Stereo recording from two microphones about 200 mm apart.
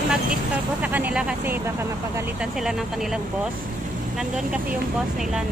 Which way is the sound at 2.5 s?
Centre (ahead or behind).